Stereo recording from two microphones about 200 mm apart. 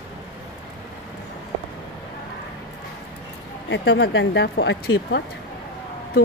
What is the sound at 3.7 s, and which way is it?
Speech, 60° left (ahead or behind).